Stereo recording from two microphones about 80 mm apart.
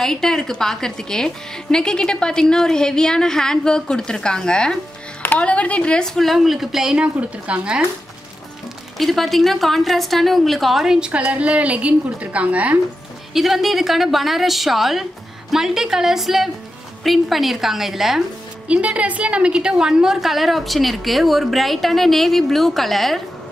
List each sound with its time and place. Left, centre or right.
0.0 s a woman's voice: centre
8.9 s a woman's voice: centre
13.3 s a woman's voice: centre
18.7 s a woman's voice: centre